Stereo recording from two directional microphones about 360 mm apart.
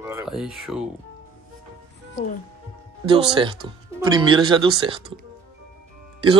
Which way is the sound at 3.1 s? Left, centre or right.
Centre.